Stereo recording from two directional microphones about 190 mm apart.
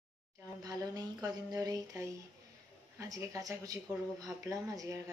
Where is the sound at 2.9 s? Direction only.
15° right (ahead or behind).